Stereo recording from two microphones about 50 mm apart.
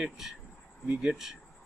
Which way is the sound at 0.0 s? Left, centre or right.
Centre.